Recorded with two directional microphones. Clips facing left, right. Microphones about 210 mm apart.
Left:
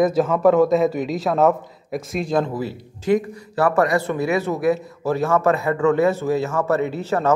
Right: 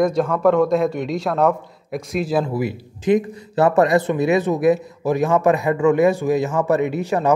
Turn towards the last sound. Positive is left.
turn(degrees=-15)  # may be behind; listen again after turning